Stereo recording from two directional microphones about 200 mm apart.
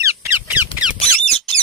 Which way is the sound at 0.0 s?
15° right (ahead or behind).